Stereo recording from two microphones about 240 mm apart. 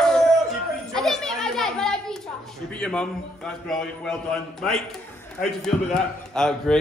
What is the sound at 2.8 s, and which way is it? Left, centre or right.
Speech, centre.